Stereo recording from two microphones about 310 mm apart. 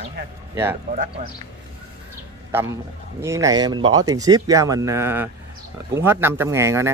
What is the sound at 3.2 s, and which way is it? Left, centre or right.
Speech, centre.